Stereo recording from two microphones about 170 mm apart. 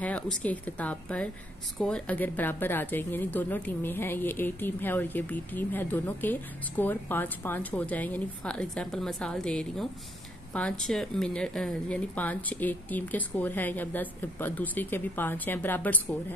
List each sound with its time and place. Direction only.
0.0 s speech: 10° left (ahead or behind)